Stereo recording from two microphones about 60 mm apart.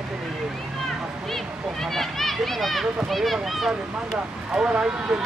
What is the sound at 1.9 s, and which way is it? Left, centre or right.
A child's voice, centre.